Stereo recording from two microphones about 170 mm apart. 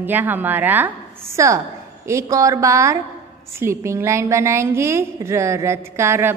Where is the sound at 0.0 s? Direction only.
10° right (ahead or behind).